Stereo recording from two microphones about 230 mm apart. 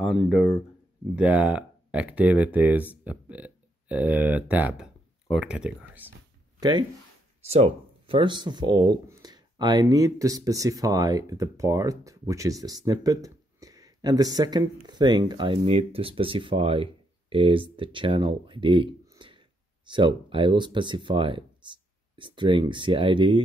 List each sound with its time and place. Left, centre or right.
0.0 s speech: centre
7.4 s speech: right